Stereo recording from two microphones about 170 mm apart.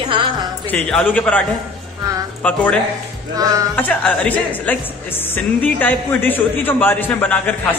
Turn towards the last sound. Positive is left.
turn(degrees=10)  # may be behind; listen again after turning